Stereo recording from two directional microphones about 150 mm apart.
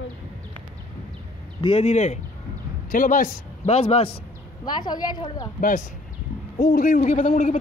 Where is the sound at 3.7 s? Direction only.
40° left (ahead or behind).